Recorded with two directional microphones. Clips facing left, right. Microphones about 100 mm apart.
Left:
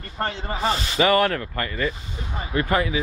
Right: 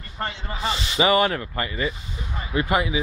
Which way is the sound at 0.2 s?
45° left (ahead or behind).